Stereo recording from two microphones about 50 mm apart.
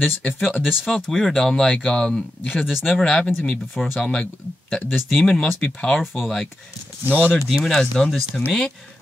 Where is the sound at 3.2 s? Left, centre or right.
Left.